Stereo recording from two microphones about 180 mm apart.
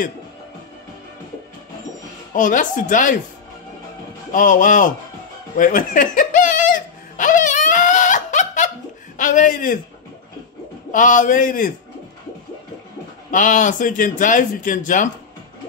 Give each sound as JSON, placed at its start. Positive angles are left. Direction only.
{"t": 2.3, "sound": "speech", "side_deg": 45}
{"t": 4.3, "sound": "speech", "side_deg": 45}
{"t": 5.6, "sound": "giggle", "side_deg": 50}
{"t": 10.9, "sound": "speech", "side_deg": 45}
{"t": 13.3, "sound": "speech", "side_deg": 45}